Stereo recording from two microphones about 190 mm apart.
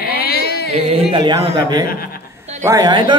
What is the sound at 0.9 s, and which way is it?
Speech, 25° right (ahead or behind).